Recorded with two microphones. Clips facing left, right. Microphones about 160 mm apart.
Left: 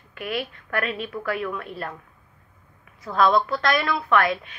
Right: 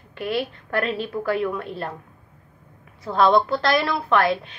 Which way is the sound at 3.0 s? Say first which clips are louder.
Right 2 dB; 30° right (ahead or behind).